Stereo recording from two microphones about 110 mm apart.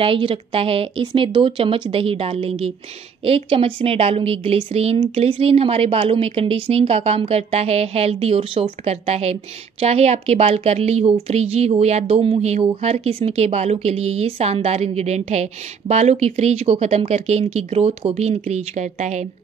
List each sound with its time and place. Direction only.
0.0 s a woman's voice: 55° right (ahead or behind); by 19.2 s 90° right